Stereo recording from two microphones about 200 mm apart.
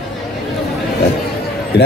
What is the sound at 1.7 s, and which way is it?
Speech, 55° left (ahead or behind).